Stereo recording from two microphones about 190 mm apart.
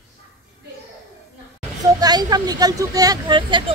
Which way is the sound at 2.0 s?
20° right (ahead or behind).